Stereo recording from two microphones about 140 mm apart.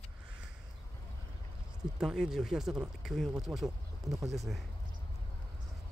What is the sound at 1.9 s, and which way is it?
Speech, 5° right (ahead or behind).